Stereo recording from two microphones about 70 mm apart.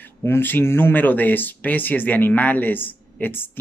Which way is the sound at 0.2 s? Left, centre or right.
Left.